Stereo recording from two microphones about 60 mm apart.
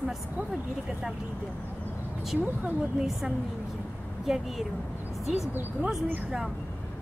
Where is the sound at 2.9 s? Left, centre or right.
Centre.